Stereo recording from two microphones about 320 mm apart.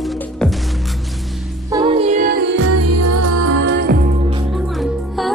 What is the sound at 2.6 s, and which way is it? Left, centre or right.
Music, right.